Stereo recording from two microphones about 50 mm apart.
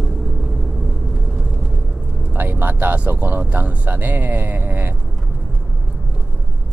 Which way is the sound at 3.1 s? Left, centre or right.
Right.